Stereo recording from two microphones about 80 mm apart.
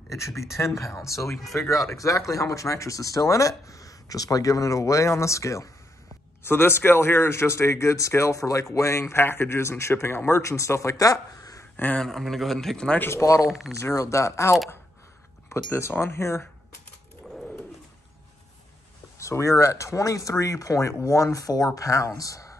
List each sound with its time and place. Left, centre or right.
0.7 s a man's voice: left
6.4 s a man's voice: left
11.7 s speech: centre
12.0 s a man's voice: centre
13.2 s speech: left
13.5 s a man's voice: centre
13.7 s a man's voice: left
15.5 s a man's voice: left
19.1 s speech: left